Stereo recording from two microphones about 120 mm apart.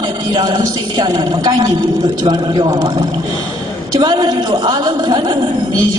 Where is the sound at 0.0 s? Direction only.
35° right (ahead or behind).